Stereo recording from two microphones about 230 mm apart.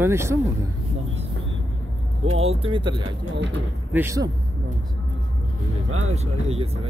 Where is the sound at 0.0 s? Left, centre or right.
Centre.